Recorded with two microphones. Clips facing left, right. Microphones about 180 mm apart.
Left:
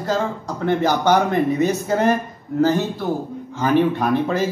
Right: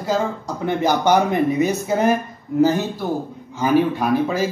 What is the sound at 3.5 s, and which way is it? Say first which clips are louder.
Speech: even; 10° right (ahead or behind).